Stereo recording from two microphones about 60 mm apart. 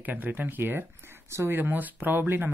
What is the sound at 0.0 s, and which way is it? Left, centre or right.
Speech, right.